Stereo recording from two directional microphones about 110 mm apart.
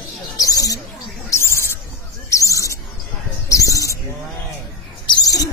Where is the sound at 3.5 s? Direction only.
30° left (ahead or behind).